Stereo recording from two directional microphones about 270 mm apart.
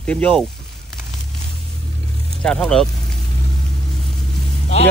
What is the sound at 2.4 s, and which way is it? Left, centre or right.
Speech, centre.